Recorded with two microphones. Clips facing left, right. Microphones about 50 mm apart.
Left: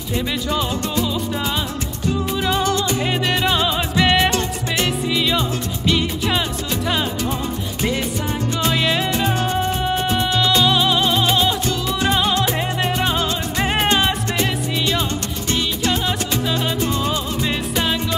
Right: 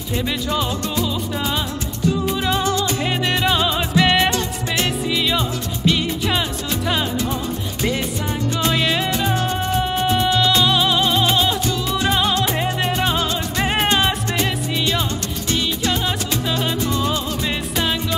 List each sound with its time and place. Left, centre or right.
0.1 s music: centre
8.6 s music: centre
15.9 s music: centre
16.8 s music: left